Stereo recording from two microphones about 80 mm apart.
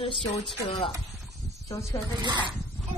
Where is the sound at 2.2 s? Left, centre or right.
Right.